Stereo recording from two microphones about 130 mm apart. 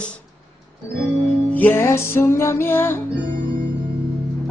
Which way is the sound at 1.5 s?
15° left (ahead or behind).